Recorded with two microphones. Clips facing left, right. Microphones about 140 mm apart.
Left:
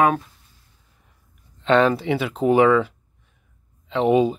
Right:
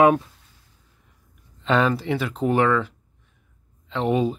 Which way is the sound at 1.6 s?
Centre (ahead or behind).